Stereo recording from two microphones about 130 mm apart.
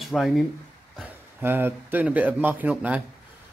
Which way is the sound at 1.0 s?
15° right (ahead or behind).